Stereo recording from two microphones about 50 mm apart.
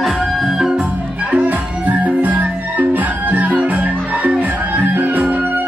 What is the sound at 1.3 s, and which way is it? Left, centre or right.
Music, right.